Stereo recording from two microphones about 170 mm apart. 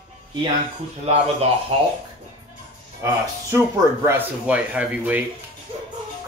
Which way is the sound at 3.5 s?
15° right (ahead or behind).